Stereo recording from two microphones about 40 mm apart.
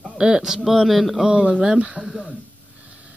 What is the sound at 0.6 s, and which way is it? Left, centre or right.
Speech, centre.